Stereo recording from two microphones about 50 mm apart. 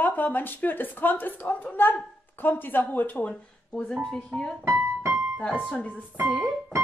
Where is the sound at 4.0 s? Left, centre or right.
Centre.